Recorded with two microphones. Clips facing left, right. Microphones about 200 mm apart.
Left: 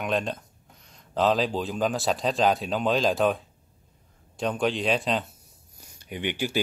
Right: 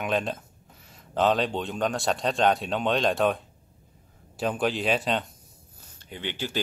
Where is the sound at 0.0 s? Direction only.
Centre (ahead or behind).